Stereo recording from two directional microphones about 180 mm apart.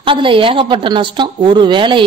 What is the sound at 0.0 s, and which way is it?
A woman's voice, 30° right (ahead or behind).